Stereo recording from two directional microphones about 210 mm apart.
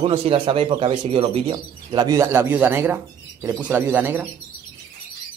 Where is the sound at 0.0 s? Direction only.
25° right (ahead or behind); by 4.3 s 10° right (ahead or behind).